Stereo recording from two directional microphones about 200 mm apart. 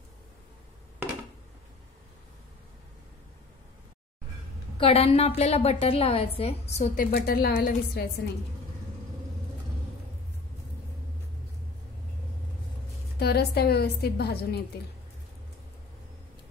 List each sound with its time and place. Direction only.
4.7 s a woman's voice: 30° left (ahead or behind)
7.0 s a woman's voice: 50° left (ahead or behind)
13.2 s a woman's voice: 55° left (ahead or behind)